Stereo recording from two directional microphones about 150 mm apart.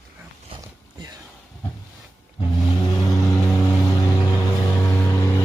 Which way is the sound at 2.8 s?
25° left (ahead or behind).